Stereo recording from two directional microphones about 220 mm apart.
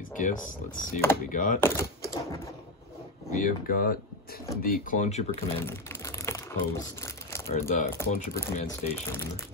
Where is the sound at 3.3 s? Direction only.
35° left (ahead or behind).